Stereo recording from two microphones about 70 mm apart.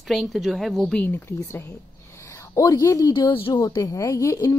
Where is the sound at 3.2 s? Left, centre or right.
Left.